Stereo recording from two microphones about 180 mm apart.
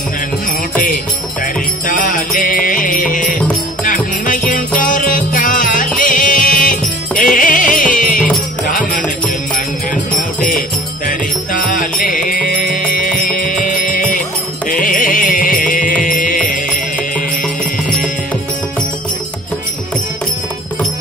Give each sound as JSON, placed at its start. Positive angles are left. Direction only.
{"t": 1.4, "sound": "music", "side_deg": 45}
{"t": 11.1, "sound": "music", "side_deg": 50}